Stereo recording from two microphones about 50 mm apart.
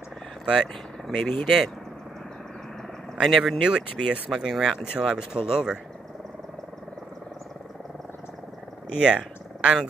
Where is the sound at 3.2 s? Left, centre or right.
Centre.